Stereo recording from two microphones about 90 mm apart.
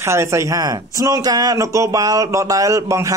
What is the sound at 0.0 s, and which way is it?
A man's voice, 30° right (ahead or behind).